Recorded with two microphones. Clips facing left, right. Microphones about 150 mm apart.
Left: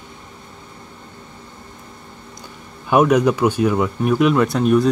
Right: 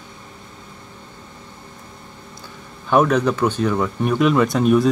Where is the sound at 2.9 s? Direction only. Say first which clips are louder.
Left 2 dB; 10° left (ahead or behind).